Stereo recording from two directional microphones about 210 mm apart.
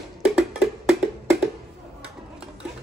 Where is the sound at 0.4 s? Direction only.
5° right (ahead or behind).